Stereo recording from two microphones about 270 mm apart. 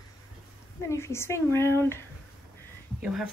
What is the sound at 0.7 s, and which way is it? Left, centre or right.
Speech, centre.